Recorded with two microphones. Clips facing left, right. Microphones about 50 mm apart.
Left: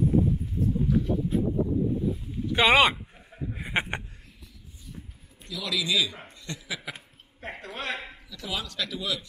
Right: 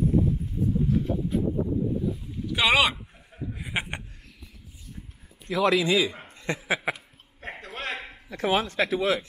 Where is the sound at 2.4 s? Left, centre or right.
Left.